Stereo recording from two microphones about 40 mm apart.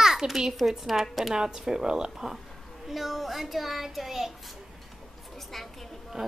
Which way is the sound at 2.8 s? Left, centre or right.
Centre.